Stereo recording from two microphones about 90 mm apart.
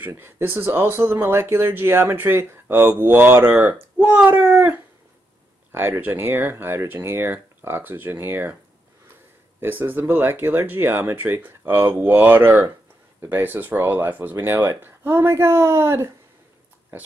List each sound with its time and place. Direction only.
0.0 s speech: 25° right (ahead or behind)
9.6 s speech: 20° right (ahead or behind)